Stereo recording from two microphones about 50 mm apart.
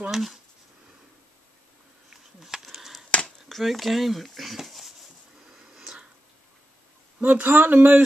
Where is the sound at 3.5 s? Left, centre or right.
Centre.